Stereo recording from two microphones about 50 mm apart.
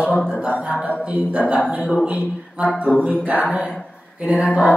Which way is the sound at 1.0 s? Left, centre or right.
Right.